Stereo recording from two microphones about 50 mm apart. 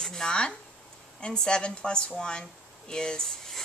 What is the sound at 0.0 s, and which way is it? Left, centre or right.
A woman's voice, centre.